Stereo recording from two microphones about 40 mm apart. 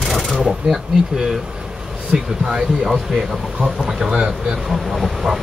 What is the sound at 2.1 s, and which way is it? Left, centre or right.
Speech, right.